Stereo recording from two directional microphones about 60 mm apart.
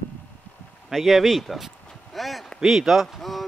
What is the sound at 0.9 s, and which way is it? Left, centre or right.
Speech, centre.